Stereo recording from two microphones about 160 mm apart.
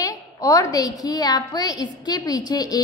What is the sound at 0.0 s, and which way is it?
A woman's voice, 20° left (ahead or behind).